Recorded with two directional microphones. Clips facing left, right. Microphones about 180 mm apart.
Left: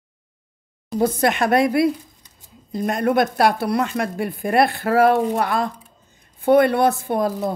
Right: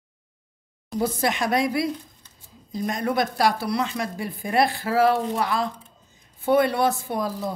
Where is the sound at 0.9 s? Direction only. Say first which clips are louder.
Left 5 dB; 55° left (ahead or behind).